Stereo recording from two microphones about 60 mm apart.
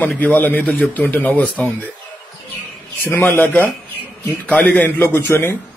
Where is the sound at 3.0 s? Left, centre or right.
Left.